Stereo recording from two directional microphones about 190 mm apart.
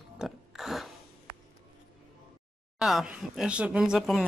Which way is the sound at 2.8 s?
Centre (ahead or behind).